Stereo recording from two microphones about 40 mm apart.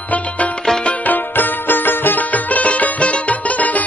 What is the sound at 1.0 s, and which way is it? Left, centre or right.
Music, left.